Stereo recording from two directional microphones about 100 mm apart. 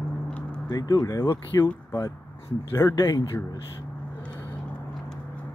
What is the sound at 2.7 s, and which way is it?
Speech, 30° left (ahead or behind).